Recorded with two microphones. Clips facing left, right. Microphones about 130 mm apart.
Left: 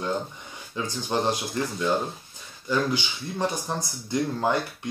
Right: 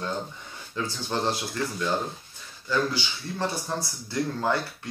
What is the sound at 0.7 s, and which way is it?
Speech, 15° left (ahead or behind).